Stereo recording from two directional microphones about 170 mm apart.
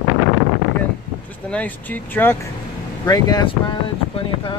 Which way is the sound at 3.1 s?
25° left (ahead or behind).